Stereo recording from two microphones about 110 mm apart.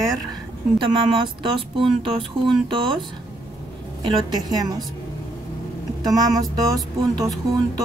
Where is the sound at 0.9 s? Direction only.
50° right (ahead or behind).